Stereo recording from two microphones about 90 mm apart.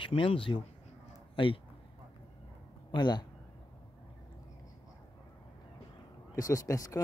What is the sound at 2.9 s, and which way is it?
Speech, 55° left (ahead or behind).